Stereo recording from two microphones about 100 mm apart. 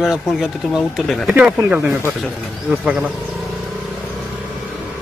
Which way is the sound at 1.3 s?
15° right (ahead or behind).